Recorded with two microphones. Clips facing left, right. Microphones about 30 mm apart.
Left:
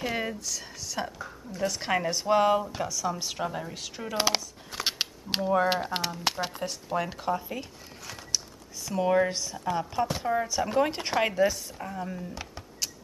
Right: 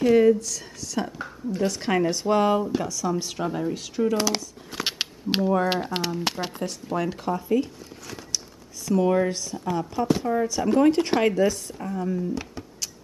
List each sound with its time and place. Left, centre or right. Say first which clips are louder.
0.0 s speech: right 14 dB; centre
1.2 s a woman's voice: right 5 dB; right
1.7 s speech: right 3 dB; centre
4.7 s a sound: right 2 dB; centre
5.4 s speech: right 1 dB; centre
6.6 s speech: right 5 dB; centre
8.8 s speech: right 3 dB; centre